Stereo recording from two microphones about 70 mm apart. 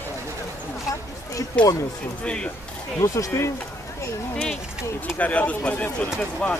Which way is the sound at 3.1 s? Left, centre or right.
Left.